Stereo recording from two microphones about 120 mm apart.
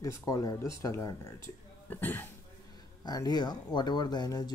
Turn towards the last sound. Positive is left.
turn(degrees=35)  # may be behind; listen again after turning